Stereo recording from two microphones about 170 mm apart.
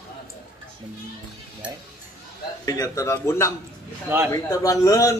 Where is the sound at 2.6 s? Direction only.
20° left (ahead or behind).